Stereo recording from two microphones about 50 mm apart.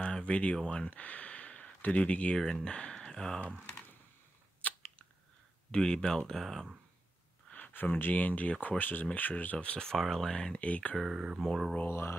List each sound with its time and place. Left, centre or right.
0.0 s a sound: left
0.7 s speech: left
2.3 s speech: centre
4.6 s chewing: left
5.7 s speech: centre
7.5 s speech: left
9.8 s speech: centre
10.6 s speech: left
11.1 s speech: centre
11.9 s speech: left